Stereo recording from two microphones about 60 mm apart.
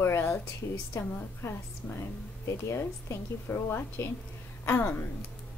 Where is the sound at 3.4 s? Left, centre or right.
Left.